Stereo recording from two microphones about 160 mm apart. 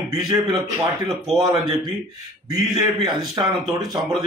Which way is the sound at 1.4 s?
25° right (ahead or behind).